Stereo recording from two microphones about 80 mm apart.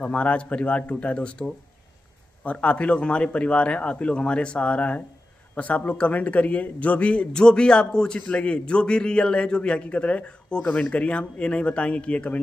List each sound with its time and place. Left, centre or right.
0.0 s a man's voice: centre